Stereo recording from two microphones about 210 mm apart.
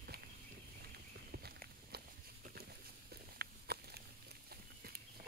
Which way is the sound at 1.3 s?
50° right (ahead or behind).